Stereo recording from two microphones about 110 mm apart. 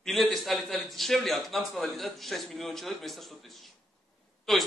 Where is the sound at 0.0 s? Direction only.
Centre (ahead or behind).